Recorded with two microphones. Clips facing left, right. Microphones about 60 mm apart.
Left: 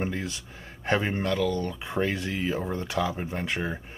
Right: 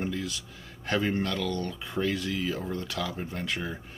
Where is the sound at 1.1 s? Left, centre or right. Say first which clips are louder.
Left 3 dB; centre.